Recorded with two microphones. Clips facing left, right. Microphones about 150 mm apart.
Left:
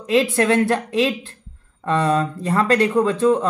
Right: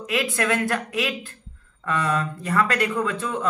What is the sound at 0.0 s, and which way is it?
Speech, 30° left (ahead or behind).